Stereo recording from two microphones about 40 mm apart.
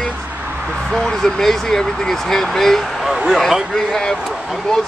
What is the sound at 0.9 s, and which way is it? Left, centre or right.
Speech, centre.